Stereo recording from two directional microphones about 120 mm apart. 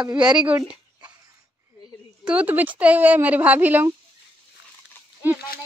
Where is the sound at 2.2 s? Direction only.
10° right (ahead or behind).